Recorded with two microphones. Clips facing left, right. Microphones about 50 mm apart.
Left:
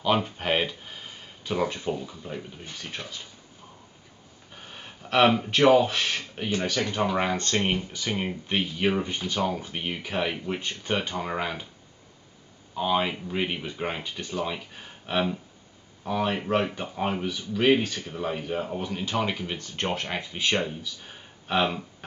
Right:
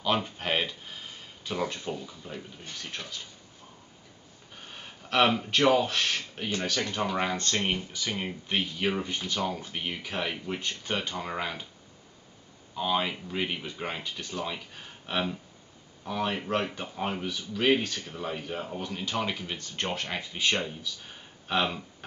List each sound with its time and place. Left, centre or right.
0.0 s speech: centre
4.6 s speech: centre
12.7 s speech: centre